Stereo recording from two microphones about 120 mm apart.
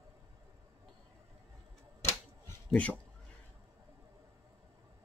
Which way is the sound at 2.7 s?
10° left (ahead or behind).